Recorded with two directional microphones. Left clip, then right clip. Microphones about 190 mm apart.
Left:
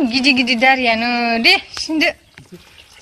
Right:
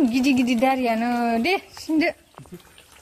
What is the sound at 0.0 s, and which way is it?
Speech, 5° right (ahead or behind).